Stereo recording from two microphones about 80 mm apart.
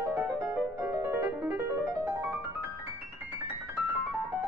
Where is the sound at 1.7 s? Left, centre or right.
Right.